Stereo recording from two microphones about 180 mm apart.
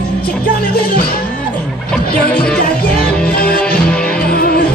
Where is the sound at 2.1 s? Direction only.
55° left (ahead or behind).